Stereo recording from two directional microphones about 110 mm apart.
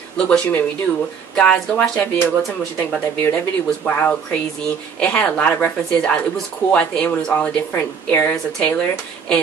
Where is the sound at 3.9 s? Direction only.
15° left (ahead or behind).